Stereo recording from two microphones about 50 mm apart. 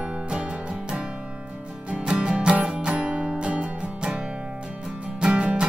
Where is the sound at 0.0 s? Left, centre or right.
Right.